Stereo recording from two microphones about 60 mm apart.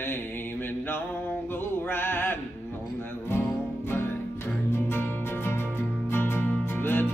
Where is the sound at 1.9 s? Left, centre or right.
Left.